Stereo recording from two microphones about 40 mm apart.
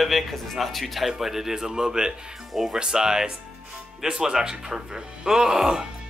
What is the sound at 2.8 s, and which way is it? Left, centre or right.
Speech, centre.